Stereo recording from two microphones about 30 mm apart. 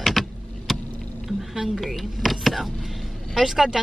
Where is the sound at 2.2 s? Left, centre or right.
Centre.